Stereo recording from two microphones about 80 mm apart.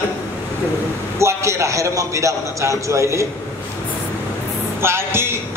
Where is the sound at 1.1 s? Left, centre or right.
Right.